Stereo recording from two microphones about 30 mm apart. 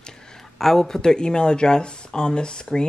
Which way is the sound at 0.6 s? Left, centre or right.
Centre.